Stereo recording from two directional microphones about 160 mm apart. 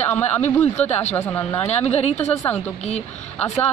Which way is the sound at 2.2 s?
10° left (ahead or behind).